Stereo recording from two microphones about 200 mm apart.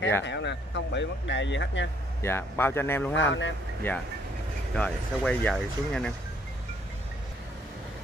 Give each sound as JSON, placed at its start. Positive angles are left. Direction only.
{"t": 0.2, "sound": "speech", "side_deg": 60}
{"t": 2.2, "sound": "speech", "side_deg": 10}
{"t": 3.2, "sound": "speech", "side_deg": 65}
{"t": 3.9, "sound": "speech", "side_deg": 10}